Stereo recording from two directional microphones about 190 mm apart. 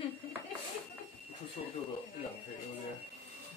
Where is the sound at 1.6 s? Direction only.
45° left (ahead or behind).